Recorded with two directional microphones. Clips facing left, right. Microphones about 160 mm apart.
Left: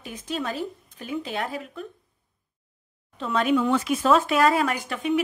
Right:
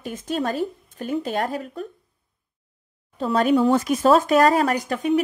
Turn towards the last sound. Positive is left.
turn(degrees=-40)  # may be behind; listen again after turning